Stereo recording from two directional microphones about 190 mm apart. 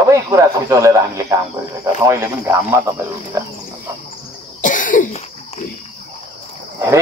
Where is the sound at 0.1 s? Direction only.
15° right (ahead or behind).